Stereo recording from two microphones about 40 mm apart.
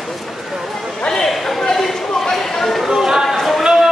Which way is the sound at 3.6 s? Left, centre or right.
Centre.